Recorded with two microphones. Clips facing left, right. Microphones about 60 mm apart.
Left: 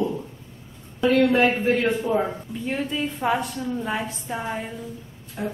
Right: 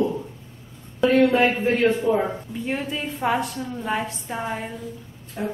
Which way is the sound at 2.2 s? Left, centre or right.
Centre.